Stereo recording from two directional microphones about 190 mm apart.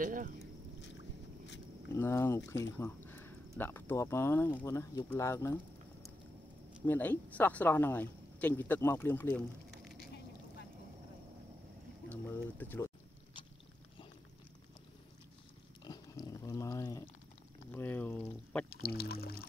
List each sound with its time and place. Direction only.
0.0 s speech: 45° right (ahead or behind)
2.0 s speech: 15° left (ahead or behind)
6.9 s speech: 10° left (ahead or behind)
12.1 s speech: 10° left (ahead or behind)
15.8 s a sound: 20° left (ahead or behind)
18.7 s music: 55° left (ahead or behind)